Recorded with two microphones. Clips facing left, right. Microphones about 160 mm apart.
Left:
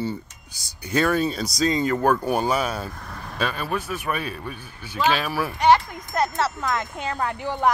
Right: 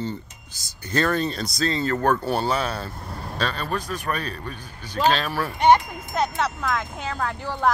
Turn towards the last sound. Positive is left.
turn(degrees=15)  # may be behind; listen again after turning